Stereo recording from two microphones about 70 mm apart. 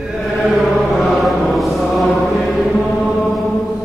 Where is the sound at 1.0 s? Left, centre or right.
Centre.